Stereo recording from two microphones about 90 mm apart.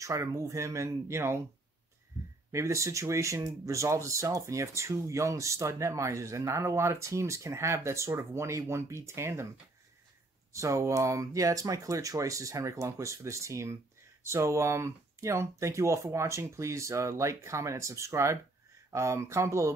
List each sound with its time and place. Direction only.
0.0 s speech: 35° right (ahead or behind)
2.5 s speech: 35° right (ahead or behind)
10.5 s speech: 35° right (ahead or behind)